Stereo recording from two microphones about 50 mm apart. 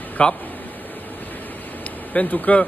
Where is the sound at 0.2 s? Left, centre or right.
Left.